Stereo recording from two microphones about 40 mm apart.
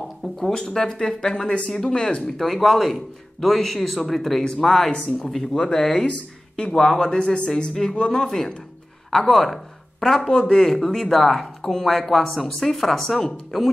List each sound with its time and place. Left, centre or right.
0.4 s a man's voice: centre